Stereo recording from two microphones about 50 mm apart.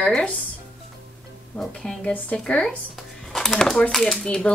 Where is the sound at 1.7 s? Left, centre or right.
Centre.